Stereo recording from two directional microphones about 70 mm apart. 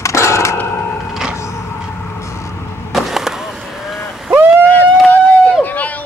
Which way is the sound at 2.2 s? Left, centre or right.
Left.